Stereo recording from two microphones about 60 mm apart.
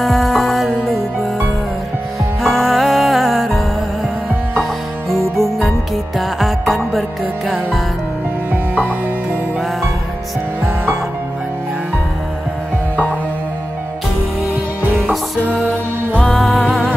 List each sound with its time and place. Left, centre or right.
0.0 s music: centre
2.4 s music: centre
5.3 s music: centre
8.7 s music: right